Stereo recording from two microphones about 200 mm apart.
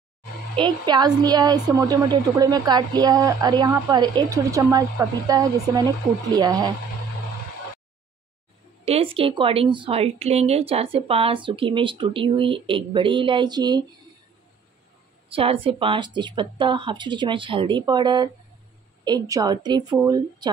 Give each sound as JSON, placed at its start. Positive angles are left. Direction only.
{"t": 0.6, "sound": "a woman's voice", "side_deg": -20}
{"t": 8.8, "sound": "a woman's voice", "side_deg": -30}
{"t": 15.2, "sound": "a woman's voice", "side_deg": -25}